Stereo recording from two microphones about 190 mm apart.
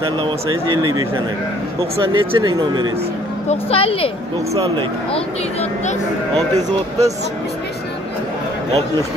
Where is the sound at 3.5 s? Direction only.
30° left (ahead or behind).